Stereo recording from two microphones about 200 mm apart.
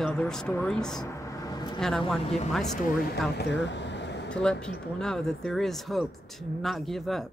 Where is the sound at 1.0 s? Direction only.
15° left (ahead or behind).